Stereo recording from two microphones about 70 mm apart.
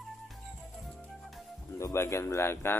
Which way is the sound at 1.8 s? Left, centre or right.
Left.